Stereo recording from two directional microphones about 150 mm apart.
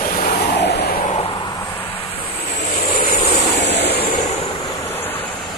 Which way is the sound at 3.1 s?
50° left (ahead or behind).